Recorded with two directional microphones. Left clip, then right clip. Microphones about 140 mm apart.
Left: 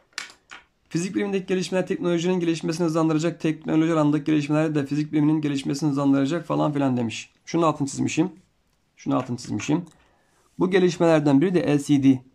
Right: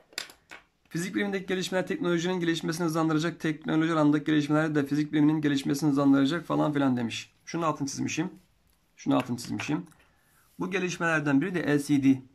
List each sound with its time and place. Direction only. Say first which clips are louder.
0.8 s speech: left 4 dB; 10° left (ahead or behind)
8.9 s speech: left 2 dB; 5° left (ahead or behind); by 9.9 s 20° left (ahead or behind)
10.6 s speech: left 9 dB; 35° left (ahead or behind)